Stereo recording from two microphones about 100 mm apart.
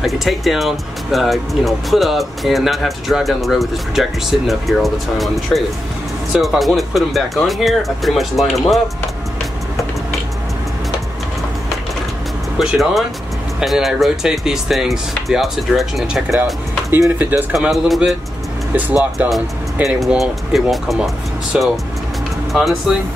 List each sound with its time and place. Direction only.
0.0 s speech: centre (ahead or behind)
12.5 s speech: centre (ahead or behind)
17.2 s a man's voice: 15° right (ahead or behind)
17.6 s speech: centre (ahead or behind)
18.7 s speech: 15° right (ahead or behind)
19.1 s a man's voice: 5° right (ahead or behind)